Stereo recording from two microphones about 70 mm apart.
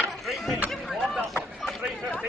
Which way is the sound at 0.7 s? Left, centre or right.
Centre.